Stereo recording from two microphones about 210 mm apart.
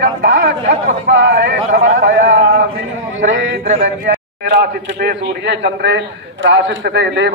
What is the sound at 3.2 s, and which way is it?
Speech, 65° right (ahead or behind).